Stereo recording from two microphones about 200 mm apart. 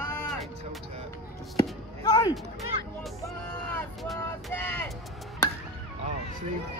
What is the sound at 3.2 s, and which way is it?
Vehicle, 10° left (ahead or behind).